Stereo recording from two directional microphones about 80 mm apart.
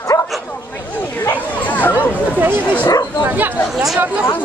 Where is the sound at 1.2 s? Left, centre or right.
Left.